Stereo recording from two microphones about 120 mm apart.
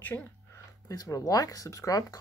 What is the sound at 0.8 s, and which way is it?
Speech, 30° left (ahead or behind).